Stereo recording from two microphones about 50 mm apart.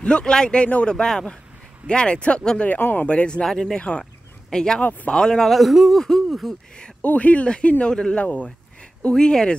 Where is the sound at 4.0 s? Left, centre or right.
Centre.